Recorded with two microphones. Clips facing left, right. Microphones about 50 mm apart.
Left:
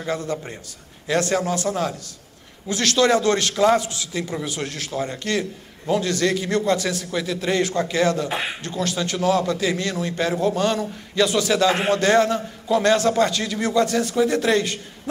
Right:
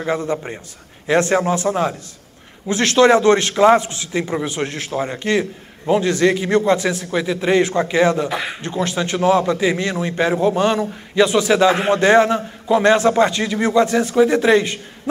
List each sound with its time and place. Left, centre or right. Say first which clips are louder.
0.0 s a man's voice: right 5 dB; right